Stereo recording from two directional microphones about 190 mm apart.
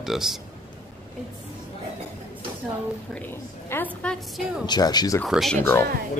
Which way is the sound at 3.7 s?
5° left (ahead or behind).